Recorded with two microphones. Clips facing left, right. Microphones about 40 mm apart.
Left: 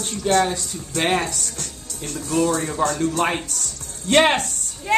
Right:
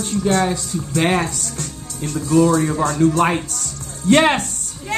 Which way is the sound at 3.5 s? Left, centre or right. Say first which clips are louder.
Right 2 dB; right.